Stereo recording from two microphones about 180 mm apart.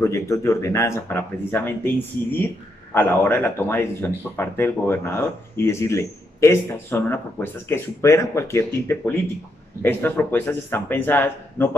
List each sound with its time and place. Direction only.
0.0 s speech: 15° left (ahead or behind)